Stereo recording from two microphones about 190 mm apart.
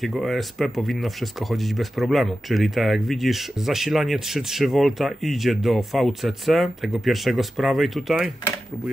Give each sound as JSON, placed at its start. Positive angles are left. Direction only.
{"t": 0.0, "sound": "speech", "side_deg": 0}